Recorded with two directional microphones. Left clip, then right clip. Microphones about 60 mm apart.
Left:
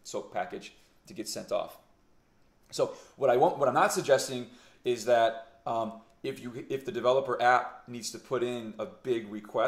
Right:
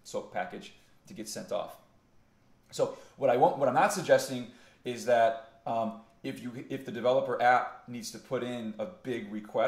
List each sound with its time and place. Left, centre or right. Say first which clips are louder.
0.0 s speech: left 1 dB; left